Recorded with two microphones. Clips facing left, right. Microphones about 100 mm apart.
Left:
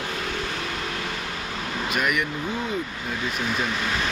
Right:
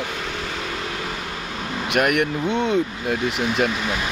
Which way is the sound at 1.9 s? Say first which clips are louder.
Right 7 dB; 65° right (ahead or behind).